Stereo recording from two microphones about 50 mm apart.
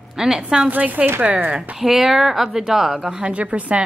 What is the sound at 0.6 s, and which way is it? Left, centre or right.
Speech, right.